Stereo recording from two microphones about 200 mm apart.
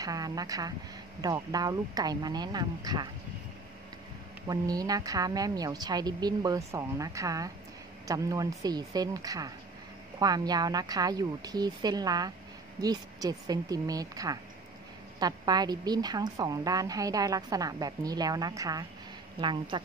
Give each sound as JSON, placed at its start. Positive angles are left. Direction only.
{"t": 0.0, "sound": "a woman's voice", "side_deg": -20}
{"t": 4.5, "sound": "a woman's voice", "side_deg": -20}